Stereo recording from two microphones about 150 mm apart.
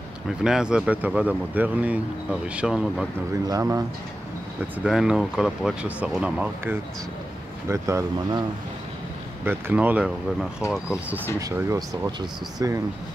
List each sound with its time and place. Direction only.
0.4 s speech: 5° right (ahead or behind)
3.4 s speech: 25° right (ahead or behind)
4.6 s speech: 5° right (ahead or behind); by 8.5 s 25° right (ahead or behind)
9.4 s speech: 15° right (ahead or behind)
11.3 s speech: 20° right (ahead or behind)